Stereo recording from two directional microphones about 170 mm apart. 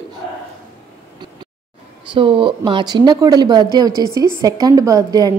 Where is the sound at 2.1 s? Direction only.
30° right (ahead or behind).